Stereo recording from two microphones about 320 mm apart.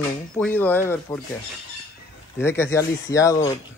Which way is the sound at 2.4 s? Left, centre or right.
Centre.